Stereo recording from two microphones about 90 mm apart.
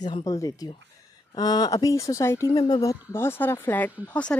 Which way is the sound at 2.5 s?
45° left (ahead or behind).